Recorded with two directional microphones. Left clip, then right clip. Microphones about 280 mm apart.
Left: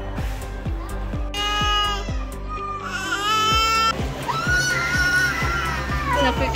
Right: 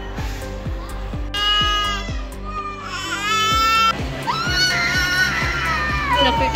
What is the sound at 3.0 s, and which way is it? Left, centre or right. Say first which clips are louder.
Music: right 1 dB; left.